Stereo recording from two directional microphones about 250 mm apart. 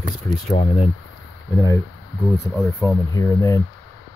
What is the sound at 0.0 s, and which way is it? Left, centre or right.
Speech, left.